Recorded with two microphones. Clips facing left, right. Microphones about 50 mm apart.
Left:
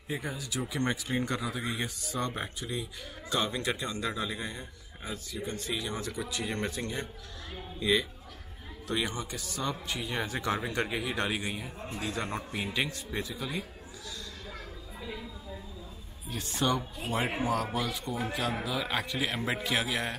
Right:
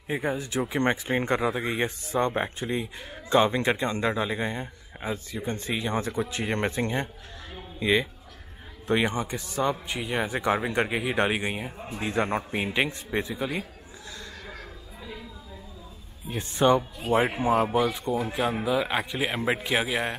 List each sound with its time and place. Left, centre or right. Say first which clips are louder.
0.1 s a man's voice: right 7 dB; right
15.0 s a sound: even; centre
16.3 s a man's voice: right 8 dB; right